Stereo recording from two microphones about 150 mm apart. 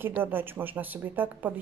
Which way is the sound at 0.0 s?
15° right (ahead or behind).